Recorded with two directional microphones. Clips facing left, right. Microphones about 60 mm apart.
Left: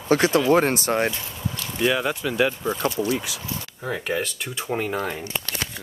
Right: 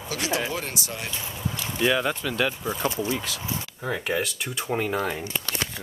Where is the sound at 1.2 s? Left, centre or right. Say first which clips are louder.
Even; right.